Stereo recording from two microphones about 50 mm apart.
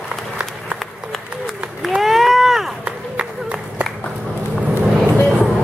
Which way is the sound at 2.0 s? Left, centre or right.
Centre.